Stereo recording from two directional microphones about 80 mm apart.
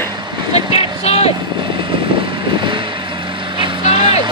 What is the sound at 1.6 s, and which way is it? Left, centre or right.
Vehicle, right.